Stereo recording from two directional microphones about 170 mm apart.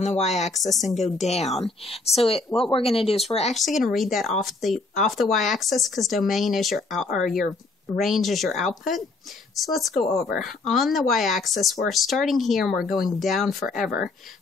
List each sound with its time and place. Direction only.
0.0 s speech: 40° left (ahead or behind)
0.6 s speech: centre (ahead or behind)
0.9 s speech: 40° left (ahead or behind)
3.5 s speech: centre (ahead or behind)